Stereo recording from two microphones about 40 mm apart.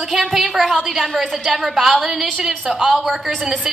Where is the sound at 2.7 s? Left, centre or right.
Centre.